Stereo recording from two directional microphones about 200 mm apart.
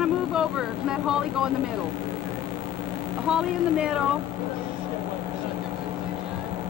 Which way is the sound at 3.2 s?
5° right (ahead or behind).